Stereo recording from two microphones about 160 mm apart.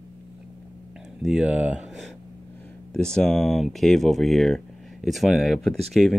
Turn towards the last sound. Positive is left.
turn(degrees=0)  # may be behind; listen again after turning